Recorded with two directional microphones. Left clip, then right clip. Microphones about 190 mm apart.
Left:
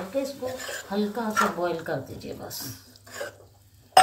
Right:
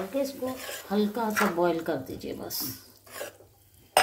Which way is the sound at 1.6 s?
60° right (ahead or behind).